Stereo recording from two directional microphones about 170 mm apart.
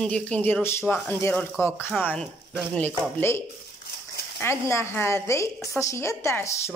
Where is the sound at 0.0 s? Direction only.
5° left (ahead or behind).